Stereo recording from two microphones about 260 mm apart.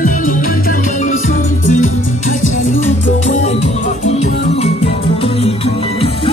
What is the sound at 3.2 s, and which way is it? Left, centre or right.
Music, left.